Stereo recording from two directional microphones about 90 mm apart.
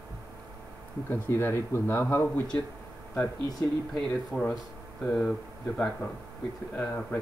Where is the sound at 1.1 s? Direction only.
25° left (ahead or behind).